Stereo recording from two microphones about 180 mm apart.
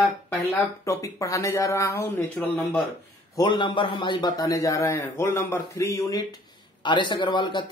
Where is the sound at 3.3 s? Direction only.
25° left (ahead or behind).